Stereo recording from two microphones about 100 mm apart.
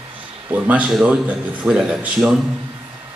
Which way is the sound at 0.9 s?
5° right (ahead or behind).